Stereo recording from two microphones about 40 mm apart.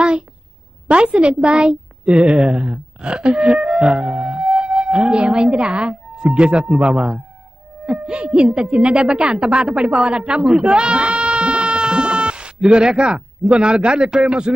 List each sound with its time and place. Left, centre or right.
0.8 s a woman's voice: right
2.3 s music: centre
2.6 s a woman's voice: right
3.4 s music: centre
4.2 s music: right
5.1 s a woman's voice: right
6.8 s speech: centre
8.0 s music: right
8.7 s a woman's voice: right
9.7 s music: centre
9.9 s a woman's voice: right
10.6 s bleat: right
12.8 s a woman's voice: centre